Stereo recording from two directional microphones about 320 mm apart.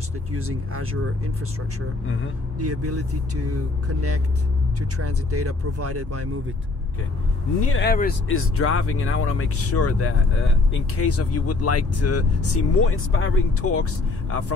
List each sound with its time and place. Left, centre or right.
0.3 s speech: right
2.6 s speech: right
7.7 s speech: left
8.4 s speech: left